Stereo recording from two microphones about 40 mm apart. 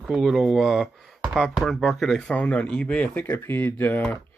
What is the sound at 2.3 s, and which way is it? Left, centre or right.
Speech, left.